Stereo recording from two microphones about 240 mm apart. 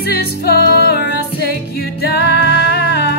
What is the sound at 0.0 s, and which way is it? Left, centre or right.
Music, left.